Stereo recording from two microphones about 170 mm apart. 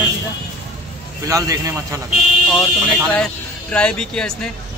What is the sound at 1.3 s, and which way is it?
Speech, 20° right (ahead or behind).